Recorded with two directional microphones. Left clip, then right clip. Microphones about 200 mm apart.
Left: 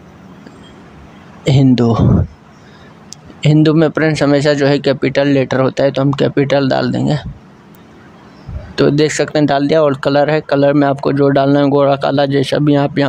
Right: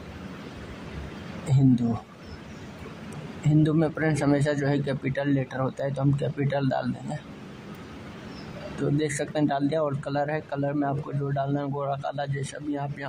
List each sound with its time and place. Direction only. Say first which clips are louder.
1.5 s a man's voice: left 12 dB; 40° left (ahead or behind)
3.4 s a man's voice: left 13 dB; 35° left (ahead or behind)
8.9 s speech: left 14 dB; 35° left (ahead or behind)